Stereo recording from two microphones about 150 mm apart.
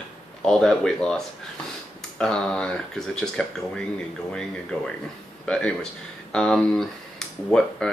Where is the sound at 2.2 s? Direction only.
5° left (ahead or behind).